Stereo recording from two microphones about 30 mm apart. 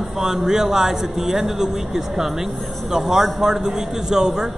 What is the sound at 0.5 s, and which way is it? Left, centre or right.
A man's voice, centre.